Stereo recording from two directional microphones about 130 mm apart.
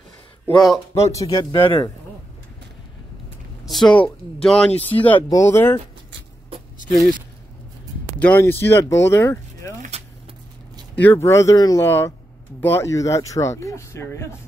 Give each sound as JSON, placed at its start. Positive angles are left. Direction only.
{"t": 1.1, "sound": "speech", "side_deg": 30}
{"t": 3.6, "sound": "speech", "side_deg": 0}
{"t": 7.0, "sound": "speech", "side_deg": 85}
{"t": 8.2, "sound": "speech", "side_deg": 15}
{"t": 9.8, "sound": "vehicle", "side_deg": -55}
{"t": 11.0, "sound": "speech", "side_deg": 15}